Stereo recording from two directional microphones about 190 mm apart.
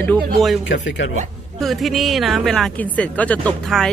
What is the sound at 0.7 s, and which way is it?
Speech, 80° left.